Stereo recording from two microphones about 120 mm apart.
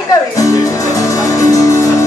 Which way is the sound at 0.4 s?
25° left (ahead or behind).